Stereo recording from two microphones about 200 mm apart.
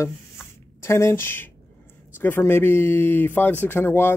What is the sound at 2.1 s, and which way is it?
Speech, 10° left (ahead or behind).